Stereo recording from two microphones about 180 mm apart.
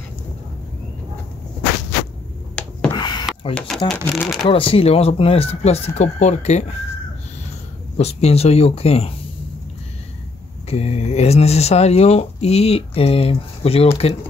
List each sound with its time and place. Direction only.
2.9 s a sound: 25° left (ahead or behind)
3.5 s speech: 5° left (ahead or behind)
4.5 s speech: 30° left (ahead or behind)
8.0 s speech: 35° left (ahead or behind)
10.7 s speech: 35° left (ahead or behind)